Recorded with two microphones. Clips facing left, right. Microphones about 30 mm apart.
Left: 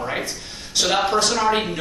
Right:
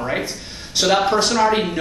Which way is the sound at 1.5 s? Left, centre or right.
Centre.